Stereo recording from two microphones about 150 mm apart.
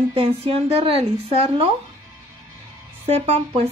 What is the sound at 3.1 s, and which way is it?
Speech, 45° right (ahead or behind).